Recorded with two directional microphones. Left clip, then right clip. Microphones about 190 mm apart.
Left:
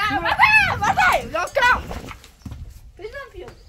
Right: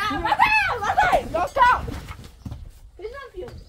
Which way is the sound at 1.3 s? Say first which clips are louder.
Even; 30° left (ahead or behind).